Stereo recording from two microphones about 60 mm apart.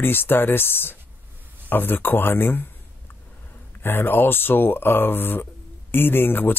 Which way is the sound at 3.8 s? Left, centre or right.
Left.